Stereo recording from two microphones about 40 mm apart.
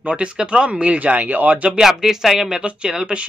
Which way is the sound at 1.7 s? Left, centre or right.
Centre.